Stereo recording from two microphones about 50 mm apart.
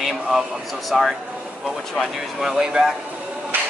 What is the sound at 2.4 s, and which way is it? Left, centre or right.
Speech, centre.